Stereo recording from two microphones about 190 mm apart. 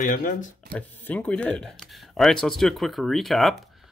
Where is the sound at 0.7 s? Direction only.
10° left (ahead or behind).